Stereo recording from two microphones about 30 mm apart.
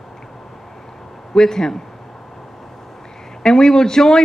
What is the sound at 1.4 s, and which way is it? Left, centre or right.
Speech, centre.